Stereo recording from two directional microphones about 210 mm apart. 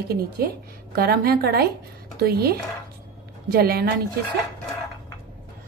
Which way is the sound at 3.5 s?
45° right (ahead or behind).